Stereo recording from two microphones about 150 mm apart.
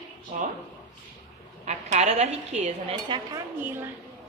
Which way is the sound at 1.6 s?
50° right (ahead or behind).